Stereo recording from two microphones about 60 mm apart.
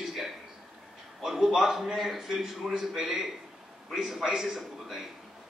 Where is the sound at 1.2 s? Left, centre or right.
Centre.